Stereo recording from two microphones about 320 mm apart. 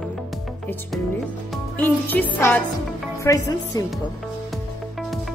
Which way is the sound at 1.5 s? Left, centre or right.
Centre.